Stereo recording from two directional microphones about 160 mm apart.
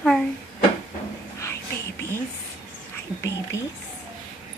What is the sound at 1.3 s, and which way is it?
Whispering, 15° left (ahead or behind).